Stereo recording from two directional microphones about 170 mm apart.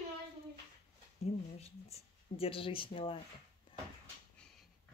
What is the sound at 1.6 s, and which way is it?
Speech, 35° left (ahead or behind).